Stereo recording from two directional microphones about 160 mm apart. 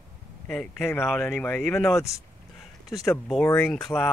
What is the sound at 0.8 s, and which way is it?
Speech, 15° left (ahead or behind).